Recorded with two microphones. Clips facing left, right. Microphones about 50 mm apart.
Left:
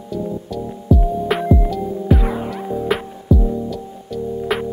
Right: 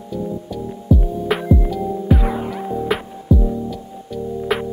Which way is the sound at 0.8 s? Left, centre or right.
Centre.